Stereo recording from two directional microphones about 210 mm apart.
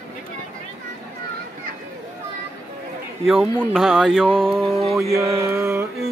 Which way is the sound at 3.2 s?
5° right (ahead or behind).